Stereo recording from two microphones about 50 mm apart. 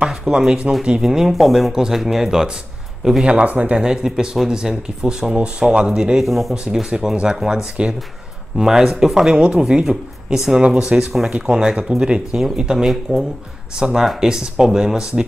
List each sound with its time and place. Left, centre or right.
0.3 s speech: centre
3.3 s speech: right
3.8 s speech: centre
6.2 s speech: centre
6.5 s speech: centre
10.6 s speech: centre
12.7 s speech: centre